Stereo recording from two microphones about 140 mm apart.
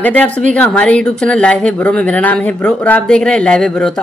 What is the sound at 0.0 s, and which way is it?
Speech, 10° left (ahead or behind).